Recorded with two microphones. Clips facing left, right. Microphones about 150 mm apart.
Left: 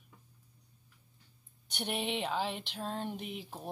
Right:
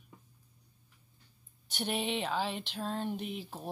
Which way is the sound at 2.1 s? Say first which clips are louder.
Right 1 dB; 10° left (ahead or behind).